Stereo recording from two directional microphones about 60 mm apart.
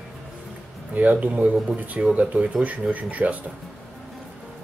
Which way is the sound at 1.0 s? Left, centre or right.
Right.